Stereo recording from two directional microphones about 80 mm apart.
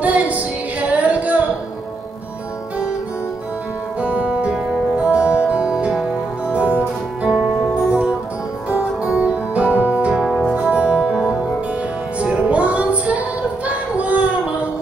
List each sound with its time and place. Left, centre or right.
0.0 s female singing: centre
4.0 s music: centre
10.2 s music: centre
10.5 s music: centre
13.7 s a sound: centre